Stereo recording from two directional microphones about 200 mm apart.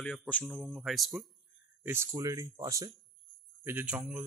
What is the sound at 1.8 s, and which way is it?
Speech, 10° right (ahead or behind).